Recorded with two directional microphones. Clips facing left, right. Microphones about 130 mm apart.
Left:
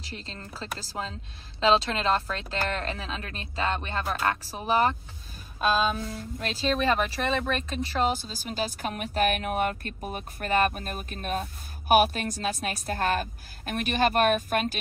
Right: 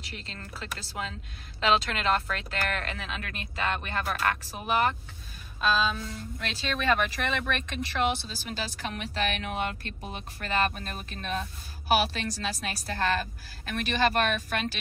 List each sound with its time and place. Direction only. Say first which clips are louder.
0.0 s speech: left 2 dB; 35° left (ahead or behind)
5.6 s speech: left 2 dB; 50° left (ahead or behind)